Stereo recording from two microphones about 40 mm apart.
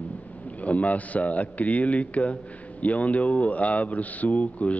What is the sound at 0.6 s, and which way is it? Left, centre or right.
Speech, left.